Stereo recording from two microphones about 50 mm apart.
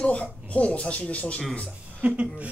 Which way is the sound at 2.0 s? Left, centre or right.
Right.